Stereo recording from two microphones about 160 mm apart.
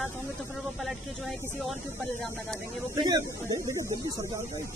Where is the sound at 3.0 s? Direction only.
25° right (ahead or behind).